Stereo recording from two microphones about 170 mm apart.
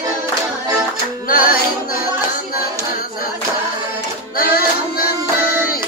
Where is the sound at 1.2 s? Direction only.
60° left (ahead or behind).